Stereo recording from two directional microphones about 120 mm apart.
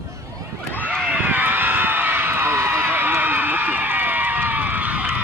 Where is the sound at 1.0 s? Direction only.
15° right (ahead or behind).